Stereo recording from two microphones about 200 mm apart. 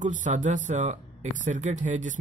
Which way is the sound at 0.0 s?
40° right (ahead or behind).